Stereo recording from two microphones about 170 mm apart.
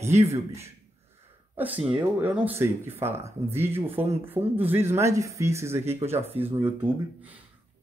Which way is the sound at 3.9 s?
35° right (ahead or behind).